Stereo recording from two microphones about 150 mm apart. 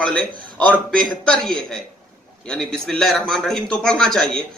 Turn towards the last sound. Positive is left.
turn(degrees=5)  # may be behind; listen again after turning